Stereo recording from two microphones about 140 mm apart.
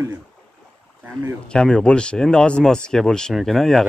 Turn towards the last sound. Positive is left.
turn(degrees=0)  # may be behind; listen again after turning